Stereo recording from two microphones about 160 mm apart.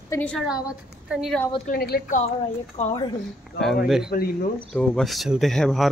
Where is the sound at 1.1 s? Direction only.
5° right (ahead or behind).